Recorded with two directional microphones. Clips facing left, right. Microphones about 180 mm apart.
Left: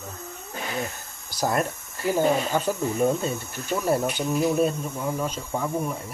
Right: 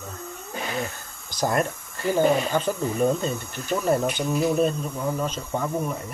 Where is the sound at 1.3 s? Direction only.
5° left (ahead or behind).